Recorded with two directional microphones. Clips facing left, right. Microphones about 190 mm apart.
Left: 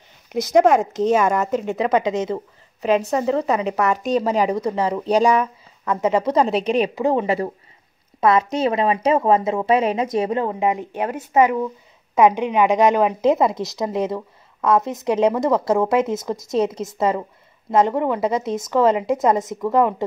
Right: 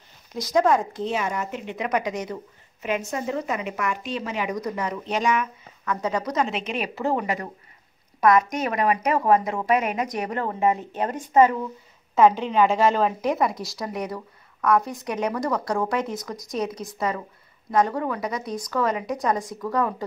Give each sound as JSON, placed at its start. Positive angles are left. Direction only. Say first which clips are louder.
{"t": 0.3, "sound": "speech", "louder": "left 5 dB", "side_deg": 70}
{"t": 1.0, "sound": "speech", "louder": "left 9 dB", "side_deg": 50}
{"t": 1.9, "sound": "a woman's voice", "louder": "left 5 dB", "side_deg": 25}
{"t": 3.1, "sound": "speech", "louder": "left 8 dB", "side_deg": 35}
{"t": 7.0, "sound": "speech", "louder": "left 5 dB", "side_deg": 15}
{"t": 8.2, "sound": "a woman's voice", "louder": "left 2 dB", "side_deg": 25}